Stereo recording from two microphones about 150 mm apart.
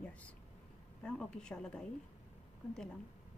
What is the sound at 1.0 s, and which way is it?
Speech, 5° left (ahead or behind).